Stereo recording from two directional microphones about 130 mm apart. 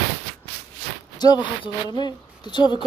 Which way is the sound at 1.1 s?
35° left (ahead or behind).